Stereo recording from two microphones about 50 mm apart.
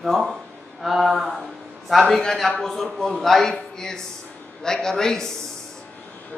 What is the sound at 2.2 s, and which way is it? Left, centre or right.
A man's voice, centre.